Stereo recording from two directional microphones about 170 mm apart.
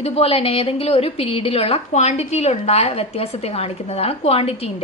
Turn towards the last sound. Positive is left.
turn(degrees=35)  # may be behind; listen again after turning